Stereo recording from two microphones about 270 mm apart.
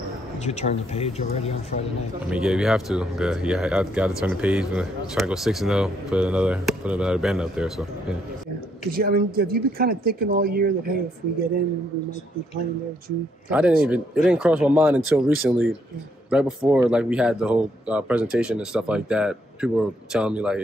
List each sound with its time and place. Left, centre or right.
0.5 s speech: left
2.2 s speech: centre
8.9 s speech: right
13.5 s speech: centre